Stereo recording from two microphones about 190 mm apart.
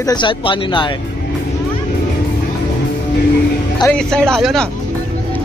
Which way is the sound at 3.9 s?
5° left (ahead or behind).